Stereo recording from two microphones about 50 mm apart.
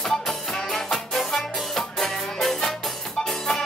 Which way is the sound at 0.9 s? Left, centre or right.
Centre.